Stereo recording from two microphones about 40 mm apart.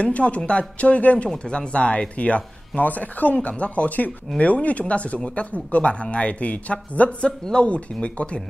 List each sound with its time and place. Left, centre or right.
0.0 s speech: left
1.3 s speech: left